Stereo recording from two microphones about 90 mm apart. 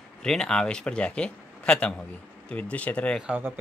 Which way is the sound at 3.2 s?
20° right (ahead or behind).